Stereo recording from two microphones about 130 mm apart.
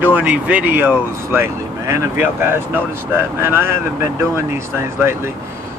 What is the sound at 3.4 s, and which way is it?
Speech, 15° right (ahead or behind).